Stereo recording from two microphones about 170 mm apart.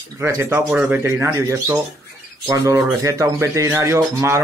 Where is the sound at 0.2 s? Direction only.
15° right (ahead or behind).